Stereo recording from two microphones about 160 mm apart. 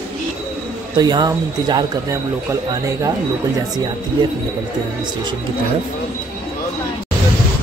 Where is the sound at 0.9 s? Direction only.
25° right (ahead or behind).